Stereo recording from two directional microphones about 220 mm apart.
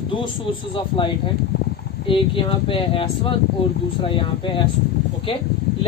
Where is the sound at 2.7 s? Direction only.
25° left (ahead or behind).